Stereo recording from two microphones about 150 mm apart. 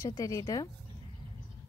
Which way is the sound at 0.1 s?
25° left (ahead or behind).